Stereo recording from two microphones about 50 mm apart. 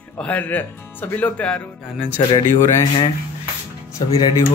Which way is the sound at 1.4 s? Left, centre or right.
Left.